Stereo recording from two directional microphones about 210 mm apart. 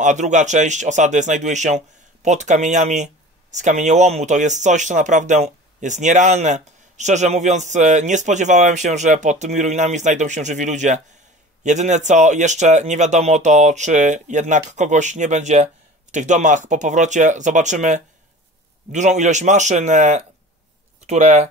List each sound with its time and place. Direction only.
0.0 s speech: 35° right (ahead or behind)